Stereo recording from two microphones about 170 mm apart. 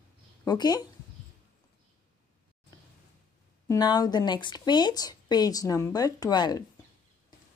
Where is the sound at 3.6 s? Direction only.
25° left (ahead or behind).